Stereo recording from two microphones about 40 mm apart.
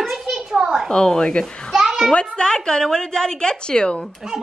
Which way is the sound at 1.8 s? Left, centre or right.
Centre.